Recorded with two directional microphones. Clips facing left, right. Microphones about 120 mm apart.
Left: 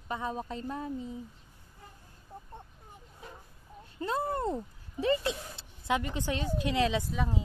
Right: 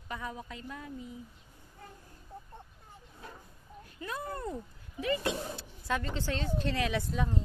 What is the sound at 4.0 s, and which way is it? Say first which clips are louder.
Speech: left 7 dB; 30° left (ahead or behind).